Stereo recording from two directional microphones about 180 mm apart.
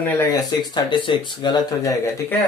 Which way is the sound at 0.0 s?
20° left (ahead or behind).